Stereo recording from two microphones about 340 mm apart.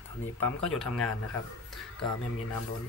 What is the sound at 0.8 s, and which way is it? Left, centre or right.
Speech, centre.